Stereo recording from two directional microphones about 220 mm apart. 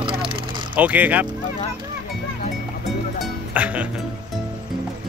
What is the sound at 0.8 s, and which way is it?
Speech, 5° right (ahead or behind).